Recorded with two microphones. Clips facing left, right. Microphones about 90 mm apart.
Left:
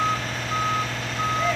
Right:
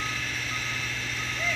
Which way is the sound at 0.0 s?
50° left (ahead or behind).